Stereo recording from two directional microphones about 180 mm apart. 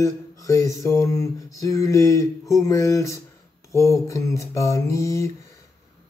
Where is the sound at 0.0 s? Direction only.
15° left (ahead or behind).